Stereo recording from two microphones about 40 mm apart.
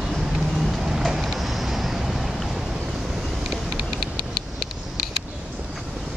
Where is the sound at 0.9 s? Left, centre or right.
Centre.